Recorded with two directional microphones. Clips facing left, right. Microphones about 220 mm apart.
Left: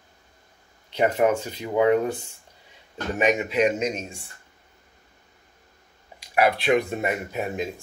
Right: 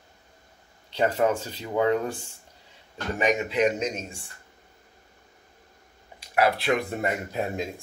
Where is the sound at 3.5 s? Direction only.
15° left (ahead or behind).